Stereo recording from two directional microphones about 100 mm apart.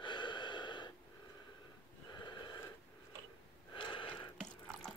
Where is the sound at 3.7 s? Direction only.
55° left (ahead or behind).